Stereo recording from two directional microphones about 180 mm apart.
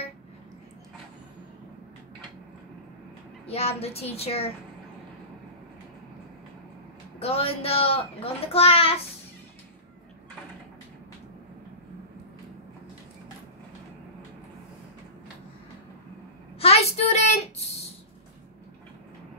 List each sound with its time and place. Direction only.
3.4 s a child's voice: 35° left (ahead or behind)
7.2 s a child's voice: 35° left (ahead or behind)
16.5 s a sound: 35° left (ahead or behind)